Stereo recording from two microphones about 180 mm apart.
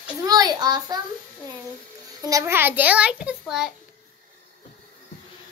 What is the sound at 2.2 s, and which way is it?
A child's voice, 15° right (ahead or behind).